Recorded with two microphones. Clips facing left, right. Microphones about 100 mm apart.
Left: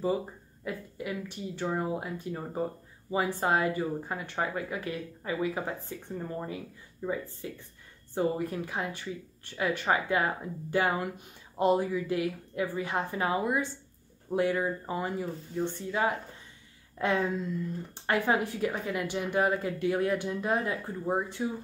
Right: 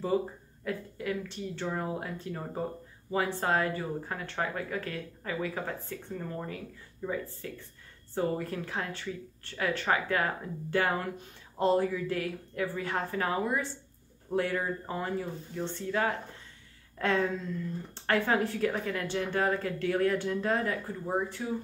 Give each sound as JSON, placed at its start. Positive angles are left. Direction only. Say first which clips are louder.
{"t": 0.7, "sound": "speech", "louder": "right 2 dB", "side_deg": 10}